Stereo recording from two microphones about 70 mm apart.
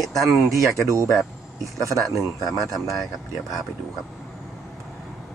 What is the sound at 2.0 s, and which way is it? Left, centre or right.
Speech, centre.